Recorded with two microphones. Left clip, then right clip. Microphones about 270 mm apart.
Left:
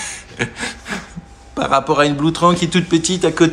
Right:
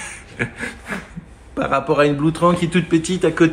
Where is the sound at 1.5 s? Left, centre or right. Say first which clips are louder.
Left 3 dB; centre.